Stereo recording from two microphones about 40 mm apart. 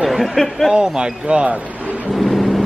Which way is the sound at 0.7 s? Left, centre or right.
Right.